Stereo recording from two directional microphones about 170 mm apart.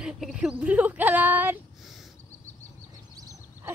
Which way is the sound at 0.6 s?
10° right (ahead or behind).